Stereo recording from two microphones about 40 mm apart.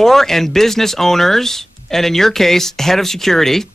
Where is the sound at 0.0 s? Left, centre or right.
Centre.